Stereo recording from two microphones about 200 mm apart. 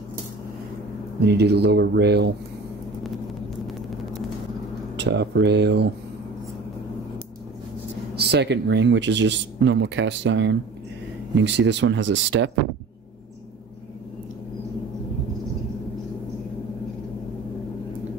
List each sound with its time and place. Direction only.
1.2 s speech: 55° right (ahead or behind)
4.9 s speech: 60° right (ahead or behind)
8.2 s speech: 55° right (ahead or behind)